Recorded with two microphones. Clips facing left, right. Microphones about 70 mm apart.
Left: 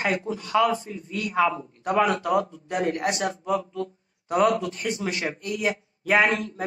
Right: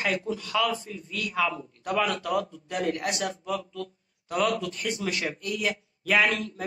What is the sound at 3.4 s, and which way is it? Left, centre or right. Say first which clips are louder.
A man's voice: left 5 dB; left.